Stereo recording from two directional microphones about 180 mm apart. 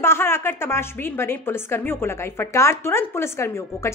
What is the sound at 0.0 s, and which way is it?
A woman's voice, 15° left (ahead or behind).